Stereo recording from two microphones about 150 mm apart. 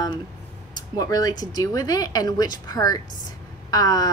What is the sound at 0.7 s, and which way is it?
A woman's voice, 25° left (ahead or behind).